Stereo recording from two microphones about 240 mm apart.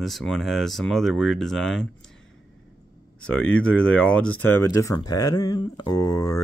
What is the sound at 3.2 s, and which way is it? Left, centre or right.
Speech, centre.